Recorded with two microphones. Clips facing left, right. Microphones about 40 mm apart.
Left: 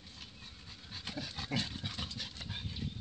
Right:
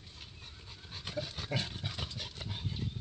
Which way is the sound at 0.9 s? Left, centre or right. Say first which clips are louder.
Right 3 dB; centre.